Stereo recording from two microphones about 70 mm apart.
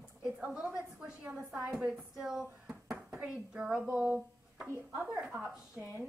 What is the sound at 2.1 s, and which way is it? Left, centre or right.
A woman's voice, centre.